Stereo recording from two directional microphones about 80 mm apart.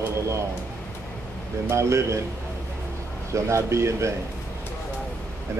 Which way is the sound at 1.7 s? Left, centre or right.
Right.